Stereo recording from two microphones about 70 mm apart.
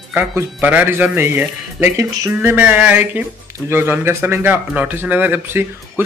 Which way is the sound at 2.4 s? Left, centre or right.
Right.